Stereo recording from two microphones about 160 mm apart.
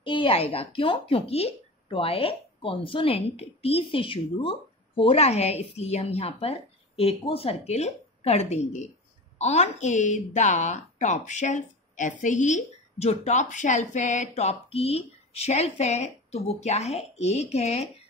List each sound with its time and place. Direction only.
0.0 s a woman's voice: 30° left (ahead or behind)